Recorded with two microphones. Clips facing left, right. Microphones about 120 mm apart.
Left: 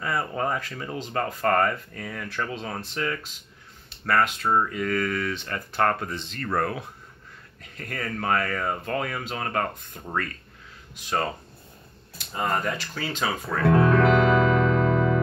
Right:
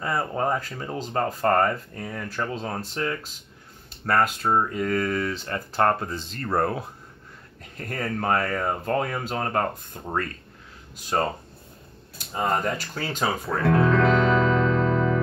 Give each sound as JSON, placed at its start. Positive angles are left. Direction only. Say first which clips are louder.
{"t": 0.0, "sound": "speech", "louder": "right 2 dB", "side_deg": -30}
{"t": 4.4, "sound": "speech", "louder": "right 1 dB", "side_deg": -20}
{"t": 4.6, "sound": "speech", "louder": "right 1 dB", "side_deg": -35}
{"t": 6.4, "sound": "speech", "louder": "right 2 dB", "side_deg": -25}
{"t": 12.7, "sound": "speech", "louder": "right 1 dB", "side_deg": -45}
{"t": 13.7, "sound": "music", "louder": "left 1 dB", "side_deg": 10}